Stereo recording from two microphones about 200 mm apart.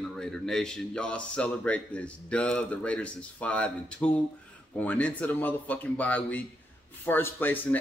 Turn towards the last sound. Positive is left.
turn(degrees=10)  # may be behind; listen again after turning